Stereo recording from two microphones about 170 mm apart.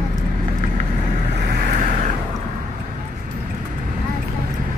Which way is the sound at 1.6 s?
50° right (ahead or behind).